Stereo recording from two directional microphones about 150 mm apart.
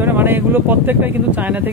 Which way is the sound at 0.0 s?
15° right (ahead or behind).